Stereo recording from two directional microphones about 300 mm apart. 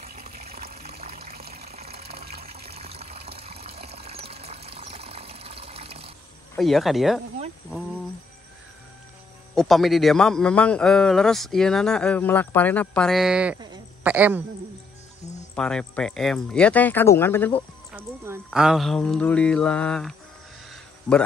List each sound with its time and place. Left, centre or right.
0.0 s water: right
1.9 s water: right
6.5 s a man's voice: centre
9.6 s a man's voice: centre
15.5 s a man's voice: centre
17.9 s a man's voice: centre